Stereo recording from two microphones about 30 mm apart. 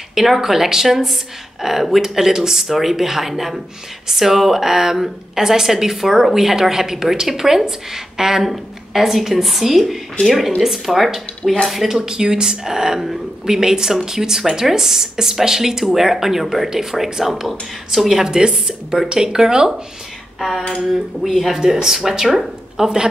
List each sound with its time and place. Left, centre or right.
0.1 s a woman's voice: centre
12.0 s a woman's voice: right
19.1 s a woman's voice: right
20.3 s a sound: centre
20.8 s a woman's voice: centre
22.8 s a woman's voice: right